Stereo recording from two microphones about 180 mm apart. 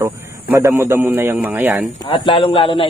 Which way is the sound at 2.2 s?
30° left (ahead or behind).